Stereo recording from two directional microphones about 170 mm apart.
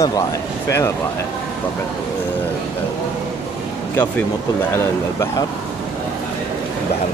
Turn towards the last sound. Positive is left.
turn(degrees=15)  # may be behind; listen again after turning